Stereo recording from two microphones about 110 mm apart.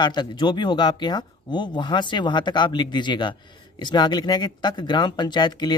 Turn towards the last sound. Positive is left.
turn(degrees=40)  # may be behind; listen again after turning